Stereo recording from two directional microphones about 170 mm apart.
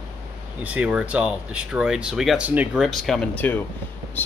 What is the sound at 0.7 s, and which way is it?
A man's voice, 5° right (ahead or behind).